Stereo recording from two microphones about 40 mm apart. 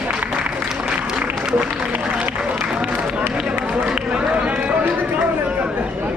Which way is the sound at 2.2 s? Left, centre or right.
Right.